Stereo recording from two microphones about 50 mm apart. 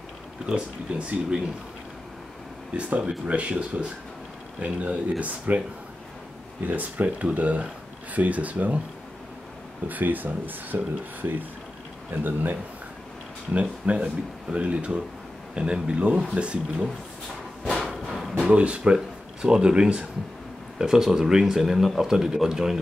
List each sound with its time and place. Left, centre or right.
0.5 s speech: centre
2.7 s speech: right
9.8 s speech: right
13.5 s speech: right
17.7 s a sound: centre
18.5 s speech: right
20.7 s speech: centre